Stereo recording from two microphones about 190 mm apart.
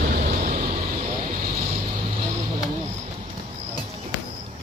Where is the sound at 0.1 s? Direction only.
45° right (ahead or behind).